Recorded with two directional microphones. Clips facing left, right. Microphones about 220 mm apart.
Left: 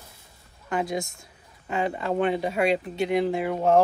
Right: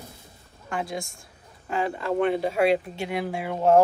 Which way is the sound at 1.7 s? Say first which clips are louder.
Even; centre (ahead or behind).